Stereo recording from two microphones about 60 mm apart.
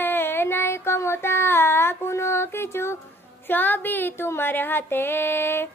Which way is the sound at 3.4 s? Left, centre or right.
Left.